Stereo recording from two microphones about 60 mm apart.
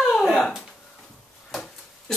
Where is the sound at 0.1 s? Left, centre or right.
Centre.